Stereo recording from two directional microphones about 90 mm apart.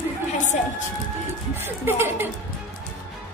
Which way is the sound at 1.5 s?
25° right (ahead or behind).